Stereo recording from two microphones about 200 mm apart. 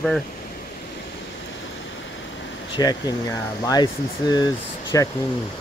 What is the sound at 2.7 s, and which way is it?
Speech, 20° left (ahead or behind).